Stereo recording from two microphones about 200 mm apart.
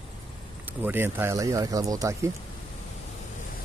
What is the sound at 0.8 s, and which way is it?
Speech, 10° right (ahead or behind).